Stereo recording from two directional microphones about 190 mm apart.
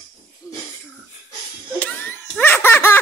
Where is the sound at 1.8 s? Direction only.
10° left (ahead or behind).